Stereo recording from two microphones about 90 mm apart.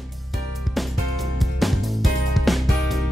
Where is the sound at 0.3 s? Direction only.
Centre (ahead or behind).